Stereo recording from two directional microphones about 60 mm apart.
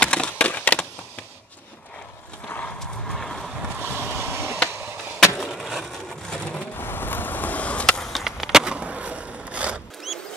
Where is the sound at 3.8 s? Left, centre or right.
Right.